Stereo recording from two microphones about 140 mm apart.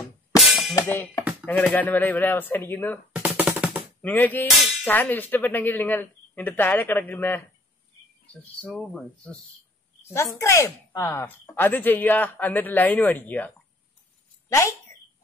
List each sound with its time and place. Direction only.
0.4 s music: centre (ahead or behind)
1.4 s speech: 10° left (ahead or behind)
3.1 s music: 10° right (ahead or behind)
3.5 s a sound: 10° right (ahead or behind)
4.0 s speech: 15° left (ahead or behind)
4.5 s music: centre (ahead or behind)
4.8 s speech: 10° left (ahead or behind)
8.5 s speech: 10° left (ahead or behind)
10.0 s speech: 20° left (ahead or behind)
14.5 s speech: 20° left (ahead or behind)